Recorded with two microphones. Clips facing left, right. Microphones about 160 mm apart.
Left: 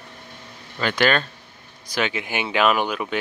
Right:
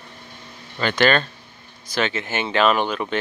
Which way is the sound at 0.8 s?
5° left (ahead or behind).